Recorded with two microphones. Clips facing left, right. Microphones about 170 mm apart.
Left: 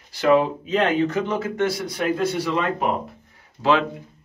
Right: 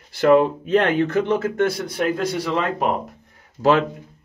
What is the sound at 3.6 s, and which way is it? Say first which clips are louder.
Speech: right 2 dB; 40° right (ahead or behind).